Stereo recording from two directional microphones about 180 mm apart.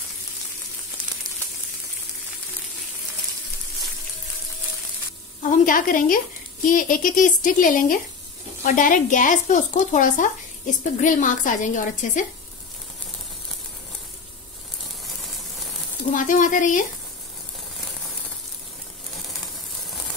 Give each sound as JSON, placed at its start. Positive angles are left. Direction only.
{"t": 5.5, "sound": "speech", "side_deg": 45}
{"t": 16.2, "sound": "speech", "side_deg": 45}